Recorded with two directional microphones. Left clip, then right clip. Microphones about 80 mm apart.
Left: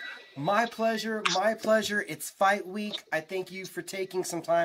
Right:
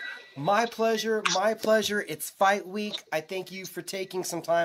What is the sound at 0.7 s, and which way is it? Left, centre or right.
Speech, right.